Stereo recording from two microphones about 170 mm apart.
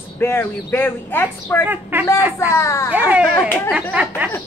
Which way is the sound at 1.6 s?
10° right (ahead or behind).